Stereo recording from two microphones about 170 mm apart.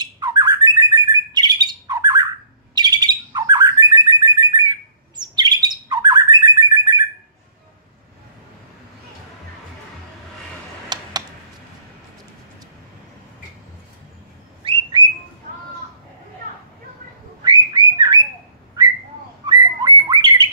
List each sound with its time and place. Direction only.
0.0 s bird: 25° right (ahead or behind)
10.9 s computer keyboard: 25° right (ahead or behind)
14.6 s bird: 30° right (ahead or behind)
17.4 s bird: 25° right (ahead or behind)
19.4 s bird: 25° right (ahead or behind)